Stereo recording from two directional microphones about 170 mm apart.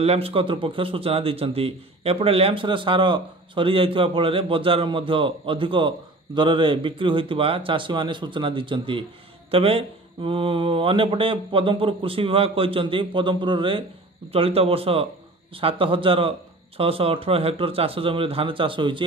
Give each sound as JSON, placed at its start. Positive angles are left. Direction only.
{"t": 0.0, "sound": "speech", "side_deg": -35}